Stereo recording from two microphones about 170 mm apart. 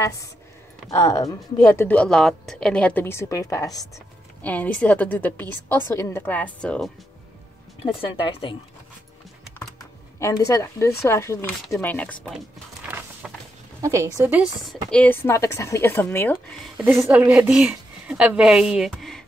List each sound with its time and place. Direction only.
0.8 s speech: 20° left (ahead or behind)
4.4 s speech: 10° left (ahead or behind)
7.8 s speech: 35° left (ahead or behind)
9.6 s speech: 20° left (ahead or behind)
12.8 s a sound: 10° right (ahead or behind)
13.7 s speech: 20° right (ahead or behind)
14.4 s speech: centre (ahead or behind)
16.7 s speech: 5° right (ahead or behind)